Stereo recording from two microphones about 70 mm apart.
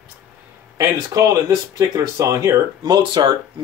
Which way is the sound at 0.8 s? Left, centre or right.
Right.